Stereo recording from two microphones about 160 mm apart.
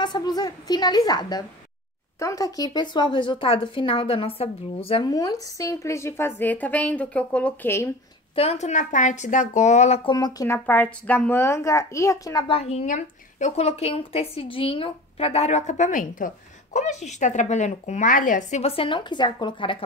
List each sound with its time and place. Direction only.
0.0 s speech: 25° left (ahead or behind)
8.4 s a woman's voice: 45° left (ahead or behind)
10.0 s speech: 25° left (ahead or behind)
12.4 s a woman's voice: 40° left (ahead or behind); by 18.6 s 55° left (ahead or behind)
18.6 s a woman's voice: 35° left (ahead or behind)